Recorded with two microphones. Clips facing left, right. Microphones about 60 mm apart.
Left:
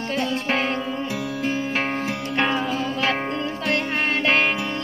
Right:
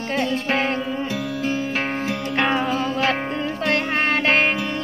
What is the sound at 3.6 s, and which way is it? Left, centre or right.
Music, right.